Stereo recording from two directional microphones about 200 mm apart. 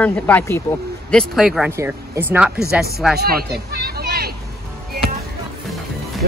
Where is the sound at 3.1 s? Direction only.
50° right (ahead or behind).